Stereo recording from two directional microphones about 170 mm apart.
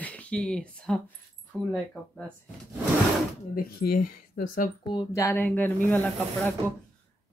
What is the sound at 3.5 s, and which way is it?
Speech, 60° left (ahead or behind).